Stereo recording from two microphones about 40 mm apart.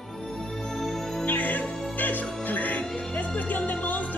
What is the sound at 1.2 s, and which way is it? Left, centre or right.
Music, left.